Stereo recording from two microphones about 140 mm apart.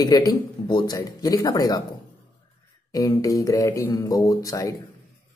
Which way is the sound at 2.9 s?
25° left (ahead or behind).